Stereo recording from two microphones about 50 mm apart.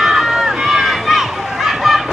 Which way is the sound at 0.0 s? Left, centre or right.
Centre.